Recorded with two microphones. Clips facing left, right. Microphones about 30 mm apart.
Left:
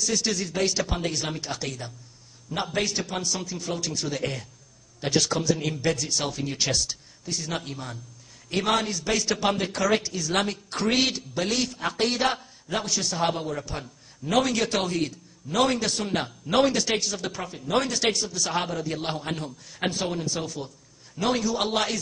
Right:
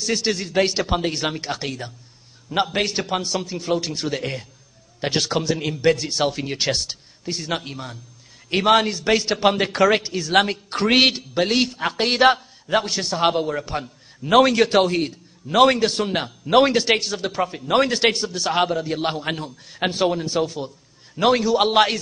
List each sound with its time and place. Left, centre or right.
0.0 s a man's voice: right
15.4 s a man's voice: right
15.8 s a man's voice: right
21.5 s a man's voice: right